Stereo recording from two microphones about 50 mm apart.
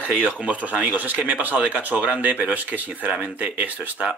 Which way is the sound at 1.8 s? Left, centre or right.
Right.